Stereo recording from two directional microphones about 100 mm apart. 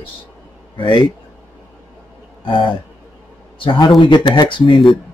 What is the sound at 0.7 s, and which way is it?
Speech, 55° left (ahead or behind).